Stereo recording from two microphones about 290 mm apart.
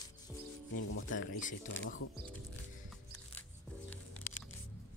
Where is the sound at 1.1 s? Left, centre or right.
Left.